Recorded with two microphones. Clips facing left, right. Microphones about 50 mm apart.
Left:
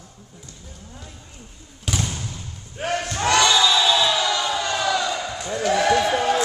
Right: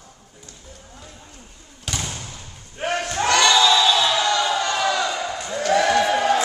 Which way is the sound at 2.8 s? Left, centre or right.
Centre.